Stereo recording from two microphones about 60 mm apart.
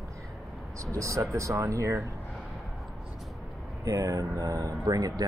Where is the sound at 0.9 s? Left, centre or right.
Right.